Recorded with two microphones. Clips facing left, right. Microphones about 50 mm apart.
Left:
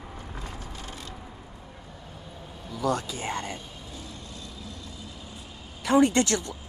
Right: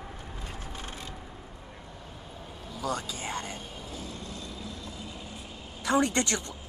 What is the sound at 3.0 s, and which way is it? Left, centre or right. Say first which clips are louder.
Speech: left 3 dB; left.